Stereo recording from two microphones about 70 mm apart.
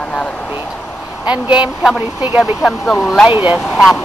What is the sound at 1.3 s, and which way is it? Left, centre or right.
Speech, centre.